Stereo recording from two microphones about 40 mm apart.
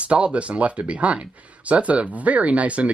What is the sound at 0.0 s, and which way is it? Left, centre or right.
Speech, right.